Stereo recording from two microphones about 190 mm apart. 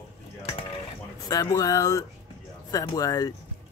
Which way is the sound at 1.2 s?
15° left (ahead or behind).